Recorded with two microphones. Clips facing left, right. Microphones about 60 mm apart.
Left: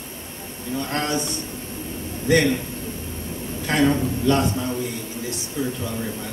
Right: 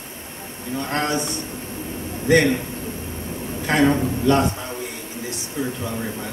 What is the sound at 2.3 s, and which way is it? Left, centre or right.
Speech, right.